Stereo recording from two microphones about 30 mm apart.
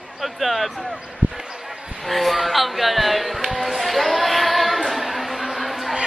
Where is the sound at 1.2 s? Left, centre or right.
Right.